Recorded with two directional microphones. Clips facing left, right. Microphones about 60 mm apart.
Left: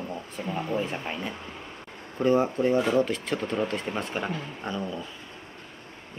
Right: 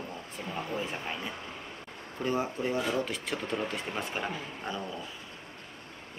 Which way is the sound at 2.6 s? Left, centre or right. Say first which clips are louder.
Left 8 dB; left.